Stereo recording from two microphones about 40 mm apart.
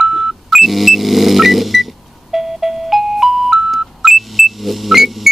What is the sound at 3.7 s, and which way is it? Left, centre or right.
Music, centre.